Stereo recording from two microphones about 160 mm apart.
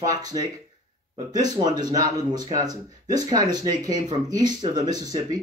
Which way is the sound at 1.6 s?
25° right (ahead or behind).